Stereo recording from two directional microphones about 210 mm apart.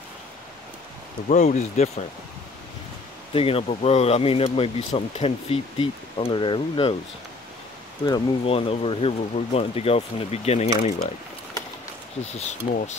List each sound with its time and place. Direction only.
1.3 s speech: 35° left (ahead or behind)
3.3 s speech: 25° left (ahead or behind)
8.0 s speech: 20° left (ahead or behind)
12.2 s speech: 30° left (ahead or behind)